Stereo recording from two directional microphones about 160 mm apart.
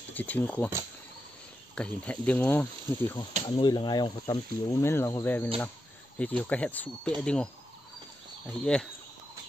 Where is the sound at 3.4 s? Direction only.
30° left (ahead or behind); by 8.9 s 5° left (ahead or behind).